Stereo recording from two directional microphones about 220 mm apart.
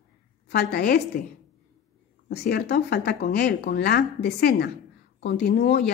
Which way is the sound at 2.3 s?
45° left (ahead or behind).